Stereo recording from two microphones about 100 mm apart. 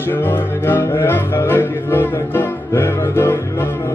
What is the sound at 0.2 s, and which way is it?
Music, 20° left (ahead or behind).